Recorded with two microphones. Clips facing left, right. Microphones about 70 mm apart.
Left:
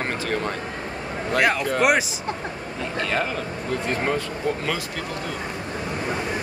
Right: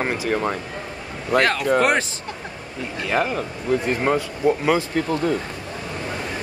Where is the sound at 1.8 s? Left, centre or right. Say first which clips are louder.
Left 1 dB; centre.